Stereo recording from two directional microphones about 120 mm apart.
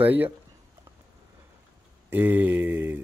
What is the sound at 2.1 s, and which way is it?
Mantra, 15° right (ahead or behind).